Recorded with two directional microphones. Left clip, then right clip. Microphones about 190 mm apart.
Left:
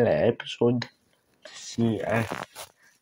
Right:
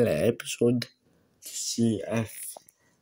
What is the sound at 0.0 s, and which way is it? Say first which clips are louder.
Speech: left 2 dB; 20° right (ahead or behind).